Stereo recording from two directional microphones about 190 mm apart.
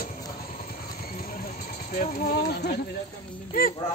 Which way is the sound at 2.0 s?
55° left (ahead or behind).